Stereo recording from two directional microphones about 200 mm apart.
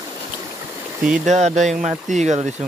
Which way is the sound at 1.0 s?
5° right (ahead or behind).